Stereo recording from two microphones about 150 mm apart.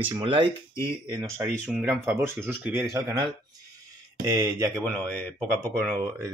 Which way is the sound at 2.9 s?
25° right (ahead or behind).